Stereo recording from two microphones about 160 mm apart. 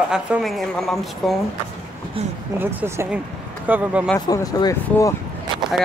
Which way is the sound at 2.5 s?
15° right (ahead or behind).